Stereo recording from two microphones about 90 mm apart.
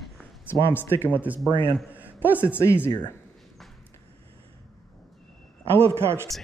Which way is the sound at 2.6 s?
25° left (ahead or behind).